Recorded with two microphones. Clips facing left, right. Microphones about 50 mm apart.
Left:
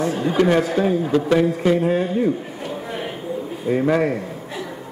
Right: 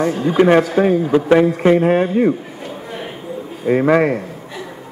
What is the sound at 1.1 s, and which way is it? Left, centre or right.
Speech, right.